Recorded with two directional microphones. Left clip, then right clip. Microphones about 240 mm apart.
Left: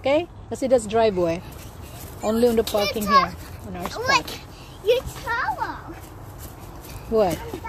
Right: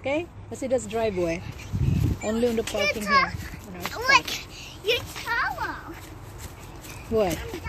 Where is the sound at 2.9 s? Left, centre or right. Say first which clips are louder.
Left 1 dB; left.